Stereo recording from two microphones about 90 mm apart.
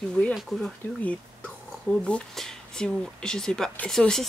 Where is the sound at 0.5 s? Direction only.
5° left (ahead or behind).